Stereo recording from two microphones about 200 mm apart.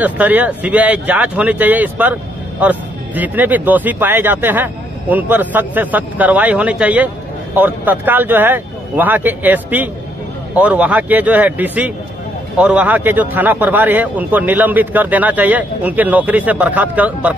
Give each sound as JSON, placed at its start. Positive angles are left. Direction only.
{"t": 0.0, "sound": "speech", "side_deg": -10}